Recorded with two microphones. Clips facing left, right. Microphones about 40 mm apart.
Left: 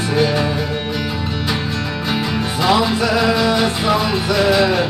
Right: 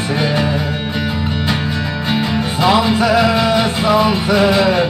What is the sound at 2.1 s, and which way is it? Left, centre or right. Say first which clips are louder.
Music: right 3 dB; centre.